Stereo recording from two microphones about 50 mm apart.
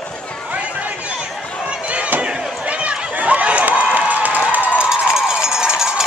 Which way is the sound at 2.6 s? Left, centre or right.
Right.